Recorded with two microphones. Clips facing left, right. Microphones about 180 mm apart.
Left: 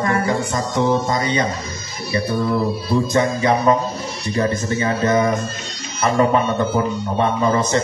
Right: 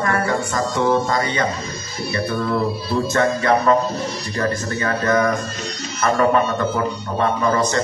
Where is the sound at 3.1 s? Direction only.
15° left (ahead or behind).